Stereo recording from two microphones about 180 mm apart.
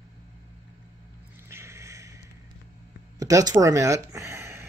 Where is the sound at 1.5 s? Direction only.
15° right (ahead or behind).